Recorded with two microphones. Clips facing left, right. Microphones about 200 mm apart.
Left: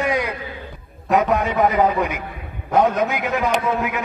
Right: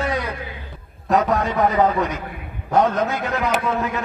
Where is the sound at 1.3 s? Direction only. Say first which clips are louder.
Left 1 dB; 15° left (ahead or behind).